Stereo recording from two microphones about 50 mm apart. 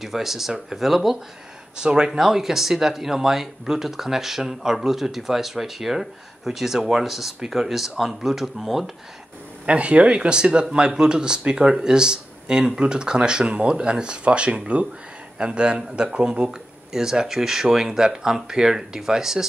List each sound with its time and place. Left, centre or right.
0.0 s speech: centre
1.8 s speech: centre
9.7 s speech: right; by 19.4 s centre